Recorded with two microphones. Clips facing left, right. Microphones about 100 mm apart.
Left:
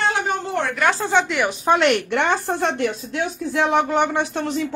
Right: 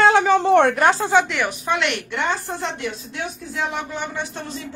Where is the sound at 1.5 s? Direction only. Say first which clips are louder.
Left 6 dB; 35° left (ahead or behind).